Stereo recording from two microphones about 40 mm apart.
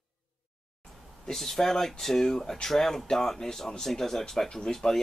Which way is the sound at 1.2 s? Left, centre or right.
Centre.